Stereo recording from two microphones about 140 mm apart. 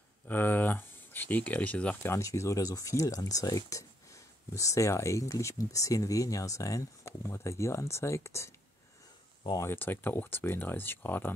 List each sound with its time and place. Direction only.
0.3 s speech: 15° left (ahead or behind)
9.6 s speech: 15° left (ahead or behind)